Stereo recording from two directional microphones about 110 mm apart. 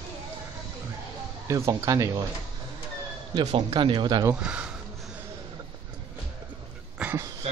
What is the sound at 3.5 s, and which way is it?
Speech, 45° right (ahead or behind).